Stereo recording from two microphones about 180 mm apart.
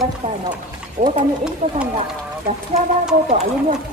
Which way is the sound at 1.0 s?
40° right (ahead or behind).